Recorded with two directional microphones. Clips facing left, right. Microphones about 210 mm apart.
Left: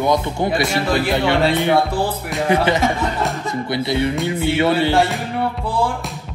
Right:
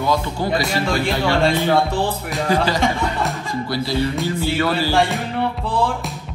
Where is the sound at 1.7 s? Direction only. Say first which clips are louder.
Left 1 dB; 5° left (ahead or behind).